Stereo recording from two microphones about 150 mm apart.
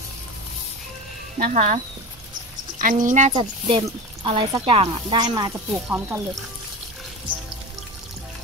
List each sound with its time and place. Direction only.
1.5 s speech: 50° right (ahead or behind)
2.8 s speech: 60° right (ahead or behind)
3.3 s speech: 35° right (ahead or behind)
5.7 s speech: 15° right (ahead or behind)